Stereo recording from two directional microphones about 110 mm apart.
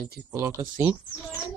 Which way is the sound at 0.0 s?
30° right (ahead or behind).